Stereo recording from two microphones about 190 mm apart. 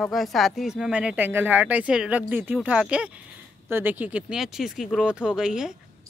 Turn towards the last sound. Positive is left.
turn(degrees=-5)  # may be behind; listen again after turning